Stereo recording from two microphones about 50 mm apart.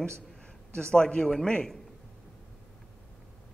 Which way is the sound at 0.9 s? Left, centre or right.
Centre.